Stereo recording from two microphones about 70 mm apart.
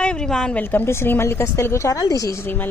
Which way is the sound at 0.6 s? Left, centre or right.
Left.